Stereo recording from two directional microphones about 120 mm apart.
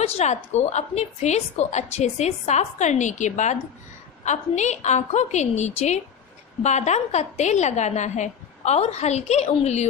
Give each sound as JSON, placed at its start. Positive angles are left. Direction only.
{"t": 0.0, "sound": "a woman's voice", "side_deg": 70}
{"t": 4.2, "sound": "a woman's voice", "side_deg": 75}